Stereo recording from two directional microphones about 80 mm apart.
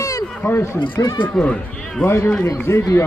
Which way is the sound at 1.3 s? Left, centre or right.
Centre.